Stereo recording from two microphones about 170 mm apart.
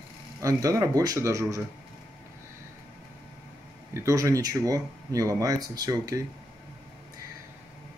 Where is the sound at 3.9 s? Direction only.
15° right (ahead or behind).